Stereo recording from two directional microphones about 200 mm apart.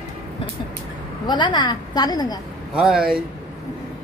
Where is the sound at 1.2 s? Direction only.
20° left (ahead or behind).